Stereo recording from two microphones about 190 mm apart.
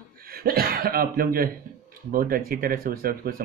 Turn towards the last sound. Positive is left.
turn(degrees=-50)  # may be behind; listen again after turning